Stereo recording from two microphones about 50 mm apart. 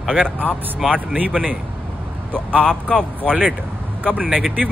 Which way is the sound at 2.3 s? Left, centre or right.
Centre.